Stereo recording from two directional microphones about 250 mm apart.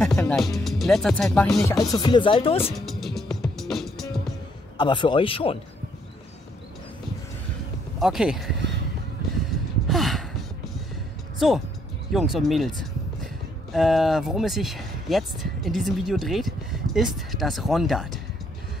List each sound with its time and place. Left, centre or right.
0.0 s speech: centre; by 2.6 s left
2.6 s music: centre
4.7 s speech: centre
8.0 s speech: centre
9.5 s gasp: centre
11.3 s speech: centre